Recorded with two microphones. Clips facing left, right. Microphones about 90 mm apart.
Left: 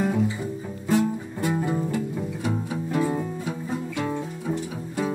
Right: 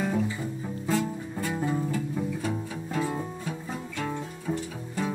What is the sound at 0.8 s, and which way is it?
Music, 15° left (ahead or behind).